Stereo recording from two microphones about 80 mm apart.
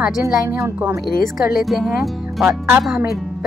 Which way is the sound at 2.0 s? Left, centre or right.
Centre.